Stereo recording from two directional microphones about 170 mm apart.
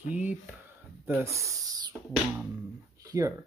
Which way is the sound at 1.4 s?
25° right (ahead or behind).